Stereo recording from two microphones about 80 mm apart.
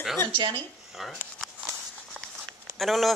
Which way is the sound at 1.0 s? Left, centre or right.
Centre.